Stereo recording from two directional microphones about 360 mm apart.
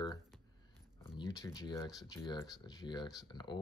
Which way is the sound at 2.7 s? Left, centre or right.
Centre.